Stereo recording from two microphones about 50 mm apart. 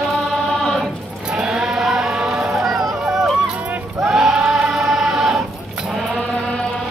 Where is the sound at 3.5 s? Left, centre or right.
Right.